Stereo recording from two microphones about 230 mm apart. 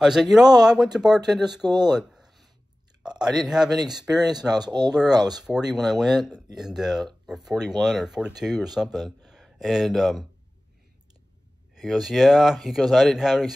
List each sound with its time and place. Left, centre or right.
0.0 s speech: centre
1.7 s a sound: centre
3.5 s speech: centre
3.9 s speech: centre
4.2 s speech: centre
5.4 s speech: centre
11.7 s speech: centre